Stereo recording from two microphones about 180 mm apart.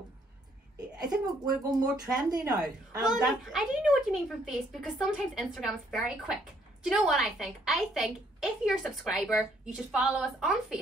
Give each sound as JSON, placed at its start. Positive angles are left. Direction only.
{"t": 1.2, "sound": "speech", "side_deg": -20}
{"t": 3.0, "sound": "a woman's voice", "side_deg": -5}